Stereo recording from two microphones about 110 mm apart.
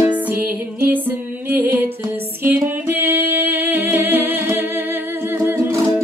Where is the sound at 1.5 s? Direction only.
20° right (ahead or behind).